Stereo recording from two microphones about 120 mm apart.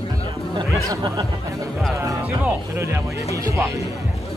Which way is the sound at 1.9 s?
25° right (ahead or behind).